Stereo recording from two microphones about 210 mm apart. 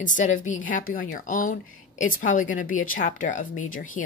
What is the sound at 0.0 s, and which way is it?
Speech, 35° left (ahead or behind).